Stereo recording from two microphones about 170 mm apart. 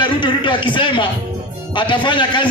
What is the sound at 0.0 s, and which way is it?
A man's voice, 30° left (ahead or behind).